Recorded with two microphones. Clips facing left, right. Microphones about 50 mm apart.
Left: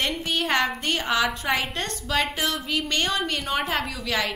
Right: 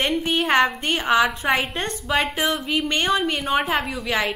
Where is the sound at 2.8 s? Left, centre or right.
Centre.